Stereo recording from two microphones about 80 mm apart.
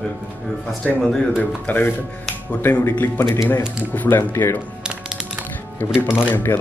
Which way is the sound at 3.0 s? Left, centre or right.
Left.